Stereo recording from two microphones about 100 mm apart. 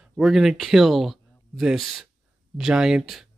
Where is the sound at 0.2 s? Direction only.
Centre (ahead or behind).